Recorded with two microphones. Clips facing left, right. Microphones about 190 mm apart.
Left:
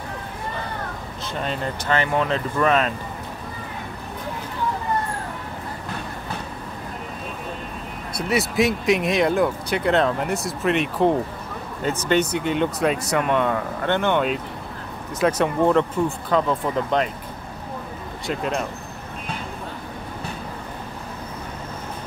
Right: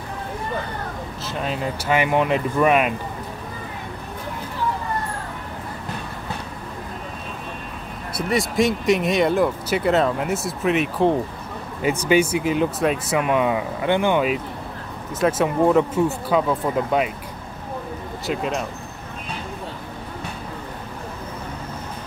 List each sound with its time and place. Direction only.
1.2 s speech: 5° right (ahead or behind)
8.3 s speech: 5° left (ahead or behind)
11.8 s speech: 10° right (ahead or behind)
18.2 s speech: centre (ahead or behind)